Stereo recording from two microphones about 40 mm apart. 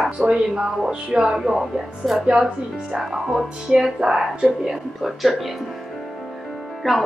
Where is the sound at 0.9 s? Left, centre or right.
Centre.